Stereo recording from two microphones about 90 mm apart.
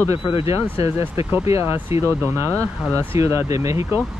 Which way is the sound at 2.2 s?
30° right (ahead or behind).